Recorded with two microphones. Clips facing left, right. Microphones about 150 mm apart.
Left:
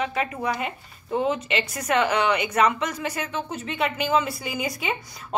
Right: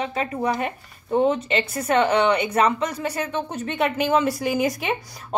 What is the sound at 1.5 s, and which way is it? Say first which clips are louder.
A woman's voice: right 3 dB; 30° right (ahead or behind).